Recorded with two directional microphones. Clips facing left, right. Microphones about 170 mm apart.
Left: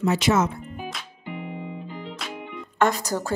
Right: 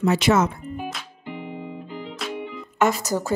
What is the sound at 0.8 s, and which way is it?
Music, centre (ahead or behind).